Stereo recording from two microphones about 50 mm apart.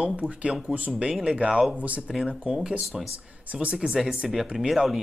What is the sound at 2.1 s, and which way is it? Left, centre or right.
Speech, centre.